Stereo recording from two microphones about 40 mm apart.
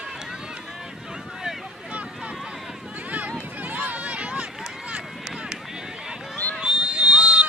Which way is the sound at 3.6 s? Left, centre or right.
Right.